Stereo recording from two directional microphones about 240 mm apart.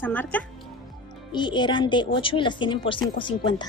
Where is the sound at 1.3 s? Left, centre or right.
Centre.